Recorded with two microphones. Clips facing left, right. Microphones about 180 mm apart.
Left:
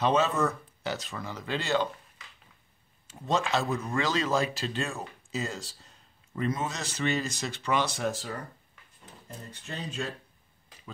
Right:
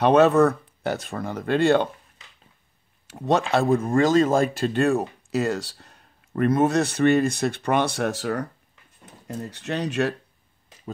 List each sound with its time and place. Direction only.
0.0 s speech: 65° right (ahead or behind)
3.1 s speech: 65° right (ahead or behind)